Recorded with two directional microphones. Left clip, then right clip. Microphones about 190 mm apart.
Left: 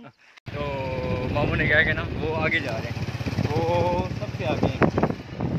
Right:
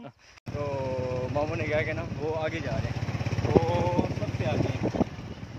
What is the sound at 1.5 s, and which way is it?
Speech, centre (ahead or behind).